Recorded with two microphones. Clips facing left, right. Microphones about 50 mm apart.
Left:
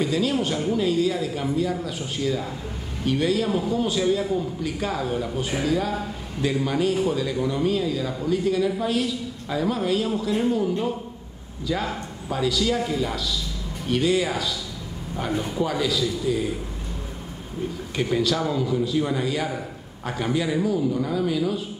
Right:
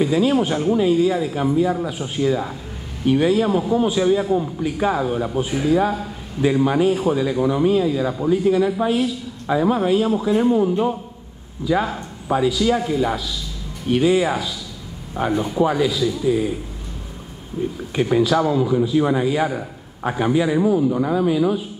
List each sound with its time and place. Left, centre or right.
0.0 s a man's voice: centre
17.6 s speech: right